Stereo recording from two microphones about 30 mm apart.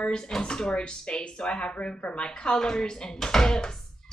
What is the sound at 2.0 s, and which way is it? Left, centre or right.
Speech, left.